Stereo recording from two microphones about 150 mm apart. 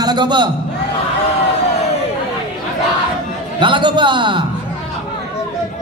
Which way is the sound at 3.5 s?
30° right (ahead or behind).